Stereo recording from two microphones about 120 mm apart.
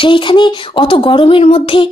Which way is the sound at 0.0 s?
45° left (ahead or behind).